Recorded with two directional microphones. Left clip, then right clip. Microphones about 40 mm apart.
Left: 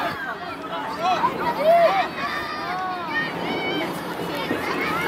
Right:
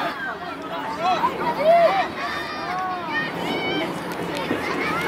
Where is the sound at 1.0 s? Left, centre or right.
Left.